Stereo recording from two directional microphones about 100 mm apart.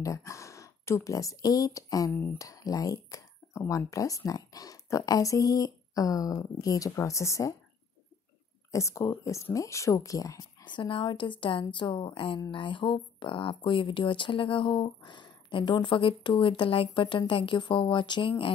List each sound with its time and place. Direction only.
0.0 s speech: 30° left (ahead or behind)
8.7 s speech: 30° left (ahead or behind)
10.6 s speech: 60° left (ahead or behind)